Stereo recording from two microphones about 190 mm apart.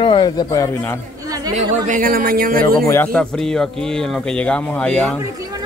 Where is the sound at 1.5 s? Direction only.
40° right (ahead or behind).